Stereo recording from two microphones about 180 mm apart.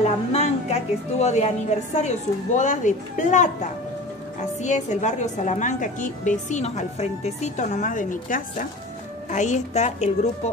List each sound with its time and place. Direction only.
0.0 s a woman's voice: 35° left (ahead or behind)